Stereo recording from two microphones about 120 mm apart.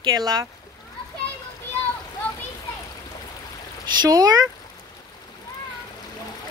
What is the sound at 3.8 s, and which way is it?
Speech, 35° right (ahead or behind).